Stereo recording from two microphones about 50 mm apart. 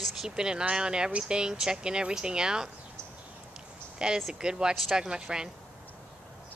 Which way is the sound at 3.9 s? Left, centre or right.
Centre.